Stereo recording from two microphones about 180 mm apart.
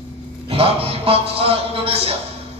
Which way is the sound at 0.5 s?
30° right (ahead or behind).